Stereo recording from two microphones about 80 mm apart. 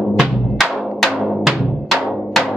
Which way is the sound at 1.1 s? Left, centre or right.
Centre.